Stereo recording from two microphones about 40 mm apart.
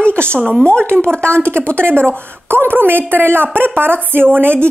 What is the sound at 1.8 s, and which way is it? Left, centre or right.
A woman's voice, right.